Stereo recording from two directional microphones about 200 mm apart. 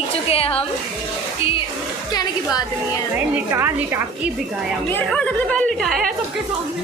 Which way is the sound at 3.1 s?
10° right (ahead or behind).